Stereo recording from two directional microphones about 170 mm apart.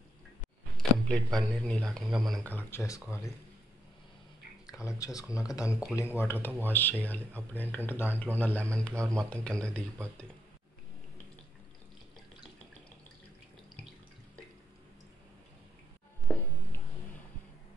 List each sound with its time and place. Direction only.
1.0 s speech: 5° left (ahead or behind)
4.8 s speech: 20° left (ahead or behind)
8.9 s speech: 15° right (ahead or behind)
9.3 s speech: 5° left (ahead or behind)
16.3 s a sound: 10° left (ahead or behind)